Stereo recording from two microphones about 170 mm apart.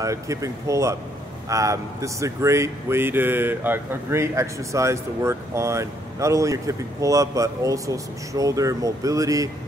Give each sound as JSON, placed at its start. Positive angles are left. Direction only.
{"t": 0.0, "sound": "speech", "side_deg": -20}